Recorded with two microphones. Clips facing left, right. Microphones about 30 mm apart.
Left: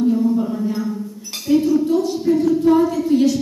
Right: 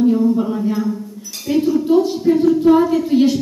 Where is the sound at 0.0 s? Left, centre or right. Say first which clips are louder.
Right 2 dB; centre.